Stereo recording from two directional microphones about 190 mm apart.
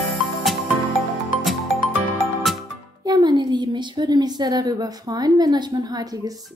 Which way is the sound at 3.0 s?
20° right (ahead or behind).